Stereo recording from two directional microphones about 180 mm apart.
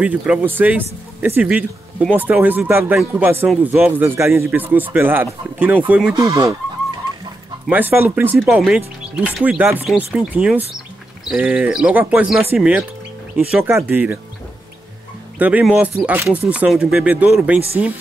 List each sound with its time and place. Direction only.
0.0 s speech: 10° right (ahead or behind)
6.2 s speech: 20° right (ahead or behind)
7.6 s speech: 10° right (ahead or behind)
15.3 s speech: 10° right (ahead or behind)